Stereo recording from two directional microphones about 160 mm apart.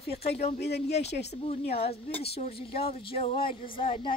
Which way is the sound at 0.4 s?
45° left (ahead or behind).